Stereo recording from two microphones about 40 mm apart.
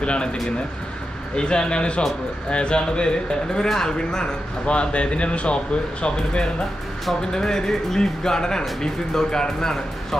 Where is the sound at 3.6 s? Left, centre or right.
Centre.